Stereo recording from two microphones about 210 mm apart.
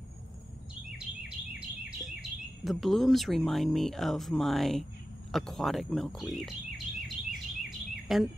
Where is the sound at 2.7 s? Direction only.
Centre (ahead or behind).